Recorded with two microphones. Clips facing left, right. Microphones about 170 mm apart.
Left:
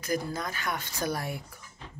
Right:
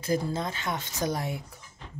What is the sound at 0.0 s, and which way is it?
Speech, 25° right (ahead or behind).